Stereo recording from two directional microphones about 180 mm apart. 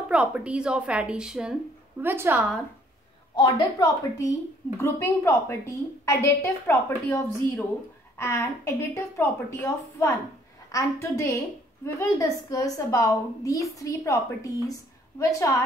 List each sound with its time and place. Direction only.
0.1 s a woman's voice: 5° right (ahead or behind)
3.3 s a woman's voice: 25° left (ahead or behind)